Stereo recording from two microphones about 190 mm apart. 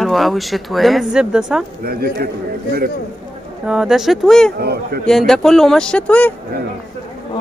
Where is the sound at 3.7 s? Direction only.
5° right (ahead or behind).